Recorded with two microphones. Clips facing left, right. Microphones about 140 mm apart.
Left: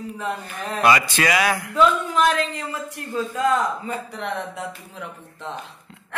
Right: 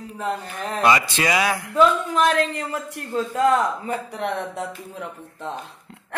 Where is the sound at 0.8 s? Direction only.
25° right (ahead or behind).